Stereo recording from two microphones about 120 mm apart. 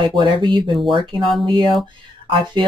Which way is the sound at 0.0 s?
45° right (ahead or behind).